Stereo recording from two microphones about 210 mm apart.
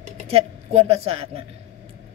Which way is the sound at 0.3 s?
30° right (ahead or behind).